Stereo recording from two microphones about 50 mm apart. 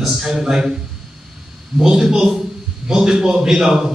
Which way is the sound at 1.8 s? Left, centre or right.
Centre.